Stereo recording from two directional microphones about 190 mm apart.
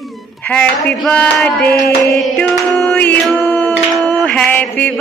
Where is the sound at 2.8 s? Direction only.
10° left (ahead or behind).